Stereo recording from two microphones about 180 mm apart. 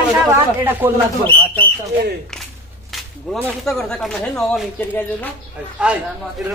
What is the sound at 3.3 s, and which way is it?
Speech, centre (ahead or behind).